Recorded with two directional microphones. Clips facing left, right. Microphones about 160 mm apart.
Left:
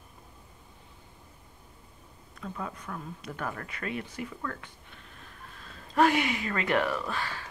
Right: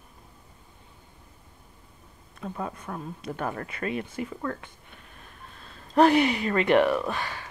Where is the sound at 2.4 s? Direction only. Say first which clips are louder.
Right 4 dB; 35° right (ahead or behind).